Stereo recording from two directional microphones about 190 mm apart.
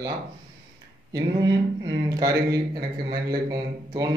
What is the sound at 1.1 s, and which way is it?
A man's voice, 20° right (ahead or behind).